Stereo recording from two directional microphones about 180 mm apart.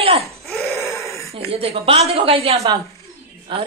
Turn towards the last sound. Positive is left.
turn(degrees=-30)  # may be behind; listen again after turning